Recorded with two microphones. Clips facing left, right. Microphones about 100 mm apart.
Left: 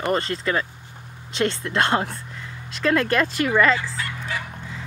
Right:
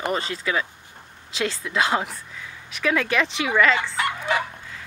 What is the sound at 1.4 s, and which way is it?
Speech, 5° right (ahead or behind).